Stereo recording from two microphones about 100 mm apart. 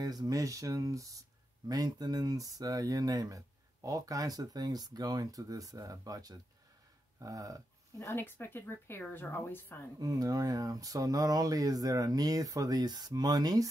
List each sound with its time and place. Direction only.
0.0 s speech: 40° right (ahead or behind)
8.0 s speech: 25° left (ahead or behind)
9.9 s speech: 35° right (ahead or behind)